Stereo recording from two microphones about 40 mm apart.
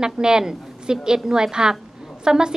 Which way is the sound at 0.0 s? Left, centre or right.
Centre.